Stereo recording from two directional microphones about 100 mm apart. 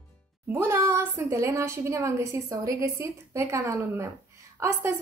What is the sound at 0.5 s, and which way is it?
A woman's voice, 20° right (ahead or behind).